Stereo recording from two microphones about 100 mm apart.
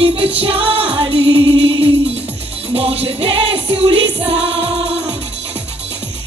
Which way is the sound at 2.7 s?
75° right (ahead or behind).